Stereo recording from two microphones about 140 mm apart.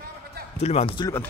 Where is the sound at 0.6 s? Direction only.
50° left (ahead or behind).